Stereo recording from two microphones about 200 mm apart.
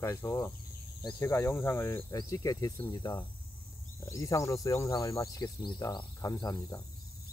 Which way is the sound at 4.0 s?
15° left (ahead or behind).